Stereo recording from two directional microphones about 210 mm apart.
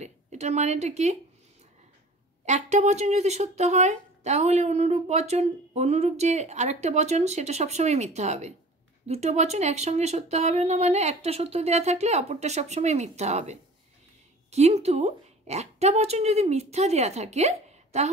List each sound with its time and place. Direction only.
0.0 s a woman's voice: 30° right (ahead or behind)
2.4 s speech: 35° right (ahead or behind)